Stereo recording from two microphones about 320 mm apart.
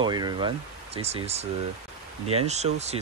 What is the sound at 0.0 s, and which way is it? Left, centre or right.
Speech, centre.